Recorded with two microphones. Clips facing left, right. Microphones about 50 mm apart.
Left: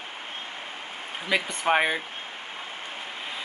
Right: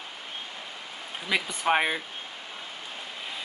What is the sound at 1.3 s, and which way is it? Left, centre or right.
Speech, centre.